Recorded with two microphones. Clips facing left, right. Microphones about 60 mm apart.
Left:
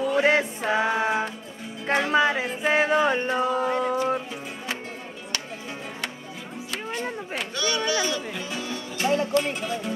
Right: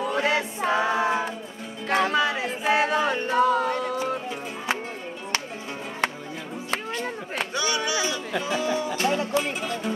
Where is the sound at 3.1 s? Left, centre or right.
Left.